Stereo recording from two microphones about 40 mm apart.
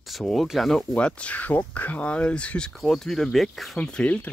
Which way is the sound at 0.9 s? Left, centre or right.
Left.